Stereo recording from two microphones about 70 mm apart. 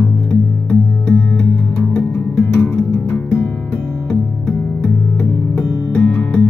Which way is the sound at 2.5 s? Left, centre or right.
Left.